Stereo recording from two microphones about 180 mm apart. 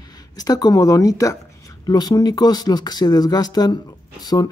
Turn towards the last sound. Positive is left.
turn(degrees=20)  # may be behind; listen again after turning